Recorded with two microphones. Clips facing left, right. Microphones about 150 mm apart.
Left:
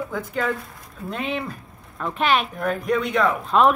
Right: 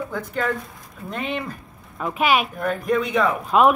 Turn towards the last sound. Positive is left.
turn(degrees=-5)  # may be behind; listen again after turning